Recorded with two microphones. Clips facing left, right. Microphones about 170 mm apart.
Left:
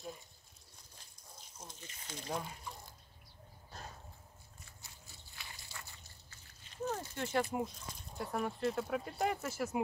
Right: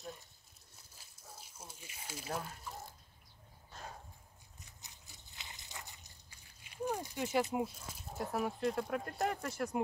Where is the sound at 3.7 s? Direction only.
35° left (ahead or behind).